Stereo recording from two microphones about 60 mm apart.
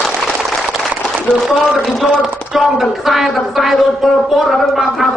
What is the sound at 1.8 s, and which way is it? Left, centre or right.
Speech, centre.